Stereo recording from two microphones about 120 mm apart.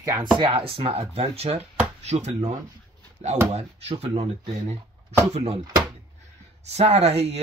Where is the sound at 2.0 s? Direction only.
70° right (ahead or behind).